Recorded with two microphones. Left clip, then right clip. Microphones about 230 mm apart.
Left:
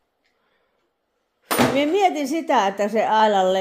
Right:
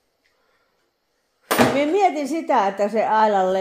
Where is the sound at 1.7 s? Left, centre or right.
Centre.